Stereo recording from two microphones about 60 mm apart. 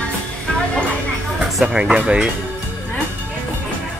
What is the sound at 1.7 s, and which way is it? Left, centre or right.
Speech, centre.